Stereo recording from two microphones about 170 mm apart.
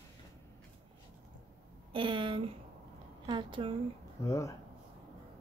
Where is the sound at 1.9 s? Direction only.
30° right (ahead or behind).